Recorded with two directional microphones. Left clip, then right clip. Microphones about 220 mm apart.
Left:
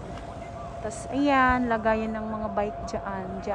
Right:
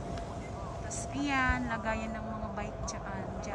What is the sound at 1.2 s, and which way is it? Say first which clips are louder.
A woman's voice: left 9 dB; centre (ahead or behind).